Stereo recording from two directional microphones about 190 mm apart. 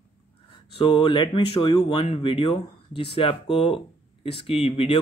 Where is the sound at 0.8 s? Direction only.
25° left (ahead or behind).